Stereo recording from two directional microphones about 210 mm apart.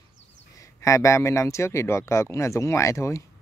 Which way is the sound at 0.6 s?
15° left (ahead or behind).